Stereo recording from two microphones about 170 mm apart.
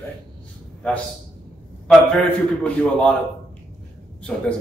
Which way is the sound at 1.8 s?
5° left (ahead or behind).